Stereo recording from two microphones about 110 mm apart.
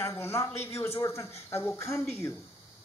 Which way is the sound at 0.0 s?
25° left (ahead or behind).